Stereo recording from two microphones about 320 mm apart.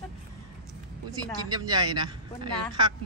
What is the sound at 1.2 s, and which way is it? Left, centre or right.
Speech, centre.